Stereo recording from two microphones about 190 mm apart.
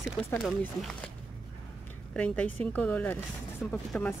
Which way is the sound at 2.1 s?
5° left (ahead or behind).